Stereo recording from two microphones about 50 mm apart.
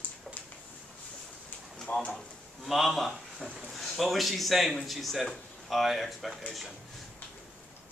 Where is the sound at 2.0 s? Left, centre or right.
Centre.